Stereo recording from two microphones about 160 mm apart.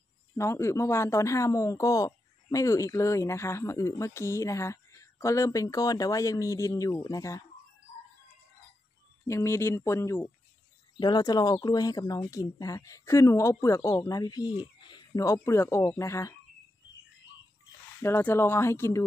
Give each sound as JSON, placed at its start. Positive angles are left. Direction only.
{"t": 0.4, "sound": "speech", "side_deg": 15}
{"t": 9.3, "sound": "speech", "side_deg": 15}
{"t": 11.0, "sound": "speech", "side_deg": 25}
{"t": 18.0, "sound": "speech", "side_deg": 15}